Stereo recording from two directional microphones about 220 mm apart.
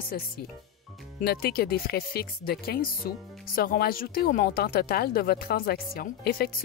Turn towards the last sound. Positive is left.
turn(degrees=45)  # may be behind; listen again after turning